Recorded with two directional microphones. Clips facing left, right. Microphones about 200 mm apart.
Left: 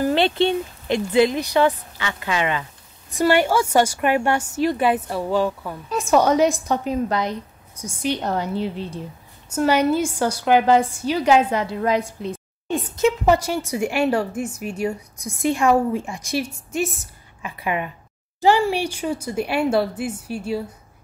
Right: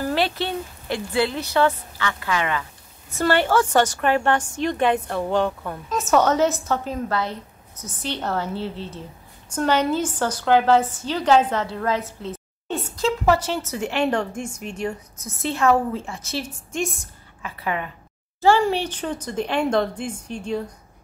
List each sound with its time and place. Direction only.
0.0 s a woman's voice: 25° left (ahead or behind); by 17.0 s 5° left (ahead or behind)
17.4 s a woman's voice: 15° left (ahead or behind)